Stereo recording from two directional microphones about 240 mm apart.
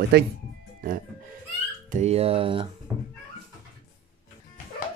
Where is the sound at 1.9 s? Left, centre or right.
Right.